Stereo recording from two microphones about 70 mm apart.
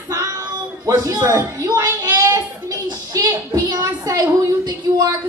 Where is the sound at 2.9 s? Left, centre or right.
Right.